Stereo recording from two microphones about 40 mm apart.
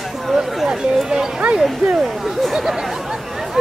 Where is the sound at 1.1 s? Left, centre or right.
Centre.